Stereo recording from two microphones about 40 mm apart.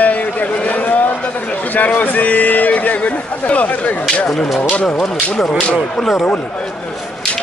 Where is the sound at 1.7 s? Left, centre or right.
Left.